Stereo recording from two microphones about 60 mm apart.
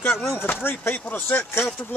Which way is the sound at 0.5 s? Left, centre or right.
Left.